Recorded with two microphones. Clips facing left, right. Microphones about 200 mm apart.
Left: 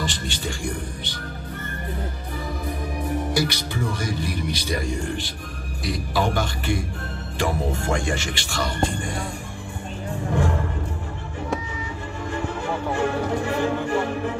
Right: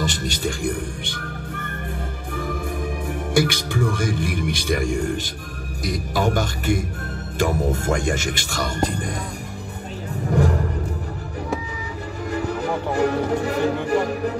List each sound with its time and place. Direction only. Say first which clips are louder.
0.0 s music: right 3 dB; 40° right (ahead or behind)
3.3 s a man's voice: right 4 dB; 50° right (ahead or behind)
10.3 s music: right 4 dB; 40° right (ahead or behind)
12.3 s music: right 3 dB; 40° right (ahead or behind)